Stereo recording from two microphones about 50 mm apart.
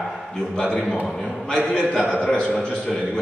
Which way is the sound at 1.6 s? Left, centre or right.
Left.